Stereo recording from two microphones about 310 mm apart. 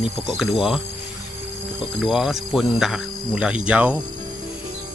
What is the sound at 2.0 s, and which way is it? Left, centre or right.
Speech, centre.